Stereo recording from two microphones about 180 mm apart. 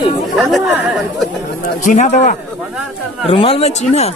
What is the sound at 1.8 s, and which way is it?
Speech, 40° left (ahead or behind).